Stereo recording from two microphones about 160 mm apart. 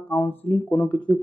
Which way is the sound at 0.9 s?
5° left (ahead or behind).